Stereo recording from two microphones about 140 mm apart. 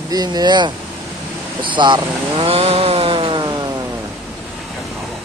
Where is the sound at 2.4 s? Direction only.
45° right (ahead or behind).